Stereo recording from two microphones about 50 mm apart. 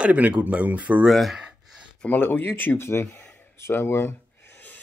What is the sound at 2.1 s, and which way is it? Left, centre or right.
Speech, left.